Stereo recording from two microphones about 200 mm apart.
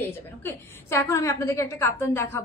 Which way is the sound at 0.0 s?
10° left (ahead or behind).